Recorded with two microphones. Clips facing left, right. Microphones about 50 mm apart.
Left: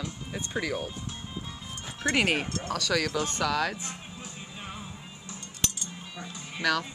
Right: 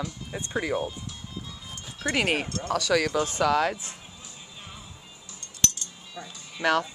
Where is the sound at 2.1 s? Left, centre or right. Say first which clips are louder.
Right 1 dB; centre.